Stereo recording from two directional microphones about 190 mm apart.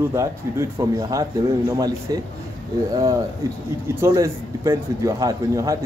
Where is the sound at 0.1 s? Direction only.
15° right (ahead or behind).